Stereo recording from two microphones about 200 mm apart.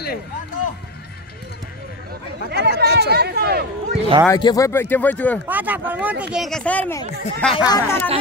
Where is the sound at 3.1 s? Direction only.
55° right (ahead or behind).